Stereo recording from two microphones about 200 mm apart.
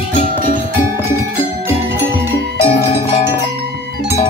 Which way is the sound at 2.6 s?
30° left (ahead or behind).